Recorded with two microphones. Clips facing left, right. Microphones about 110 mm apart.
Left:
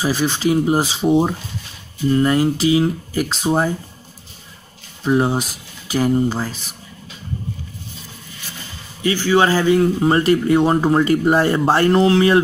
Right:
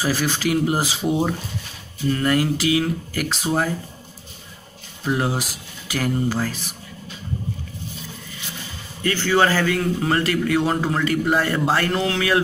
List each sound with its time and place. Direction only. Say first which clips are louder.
0.0 s a man's voice: left 3 dB; 20° left (ahead or behind)
5.0 s a man's voice: left 6 dB; 25° left (ahead or behind)
9.0 s speech: left 4 dB; 10° left (ahead or behind)
9.4 s a man's voice: left 5 dB; 20° left (ahead or behind)